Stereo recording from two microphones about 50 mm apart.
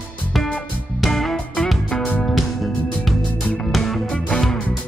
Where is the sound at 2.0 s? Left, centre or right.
Left.